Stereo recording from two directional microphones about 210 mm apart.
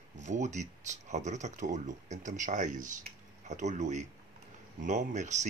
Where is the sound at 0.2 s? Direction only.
35° right (ahead or behind).